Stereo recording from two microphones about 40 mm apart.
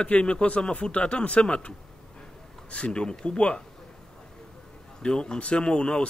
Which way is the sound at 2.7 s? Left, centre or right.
Left.